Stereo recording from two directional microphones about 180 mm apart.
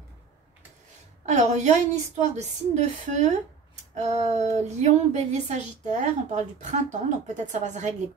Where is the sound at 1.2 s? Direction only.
40° right (ahead or behind).